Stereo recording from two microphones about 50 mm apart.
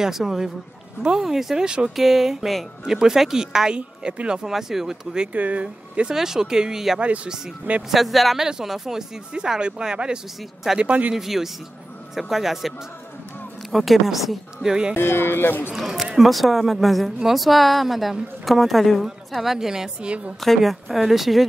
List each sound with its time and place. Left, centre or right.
0.0 s speech: centre
2.0 s speech: centre
5.3 s speech: right
6.1 s speech: centre
10.8 s speech: right
11.1 s speech: centre
15.0 s speech: left
15.7 s speech: centre
20.0 s speech: right
20.3 s speech: centre